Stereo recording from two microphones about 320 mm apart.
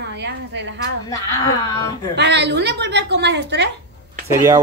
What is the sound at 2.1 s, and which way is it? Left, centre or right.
A woman's voice, right.